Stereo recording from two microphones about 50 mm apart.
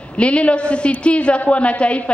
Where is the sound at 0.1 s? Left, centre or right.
Left.